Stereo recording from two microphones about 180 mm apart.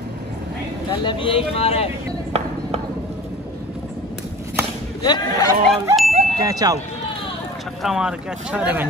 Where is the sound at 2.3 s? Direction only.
35° right (ahead or behind).